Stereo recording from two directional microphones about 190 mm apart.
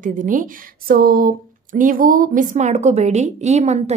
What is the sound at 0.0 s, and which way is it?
Speech, 45° right (ahead or behind).